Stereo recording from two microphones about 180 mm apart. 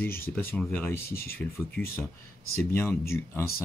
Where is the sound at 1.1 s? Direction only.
55° left (ahead or behind).